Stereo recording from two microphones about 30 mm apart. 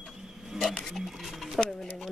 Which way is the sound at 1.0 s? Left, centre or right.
Centre.